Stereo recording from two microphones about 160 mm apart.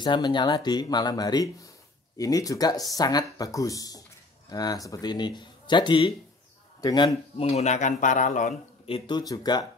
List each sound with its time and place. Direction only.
0.0 s speech: 30° left (ahead or behind)
7.3 s speech: 40° left (ahead or behind)
8.8 s speech: 30° left (ahead or behind)